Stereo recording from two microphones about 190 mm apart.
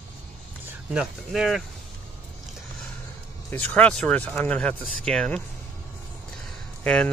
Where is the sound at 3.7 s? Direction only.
5° left (ahead or behind).